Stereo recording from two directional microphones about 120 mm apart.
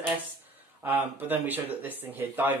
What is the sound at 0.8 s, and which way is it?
Speech, 15° right (ahead or behind).